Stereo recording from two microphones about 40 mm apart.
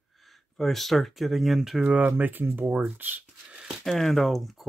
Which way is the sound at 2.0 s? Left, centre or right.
Right.